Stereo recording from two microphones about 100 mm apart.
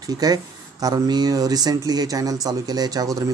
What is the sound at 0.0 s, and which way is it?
Speech, 40° right (ahead or behind).